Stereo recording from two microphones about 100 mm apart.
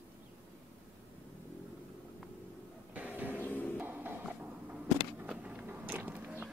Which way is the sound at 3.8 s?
20° right (ahead or behind).